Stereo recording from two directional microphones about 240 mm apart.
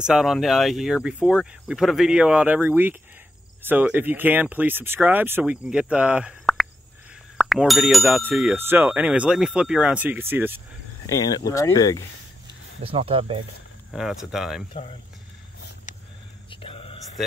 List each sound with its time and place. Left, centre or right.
0.0 s speech: centre
11.1 s speech: centre
12.8 s speech: right
13.9 s speech: centre
14.7 s speech: left
16.4 s a sound: left